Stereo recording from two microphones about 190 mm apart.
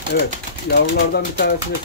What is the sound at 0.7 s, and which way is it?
Speech, 55° left (ahead or behind).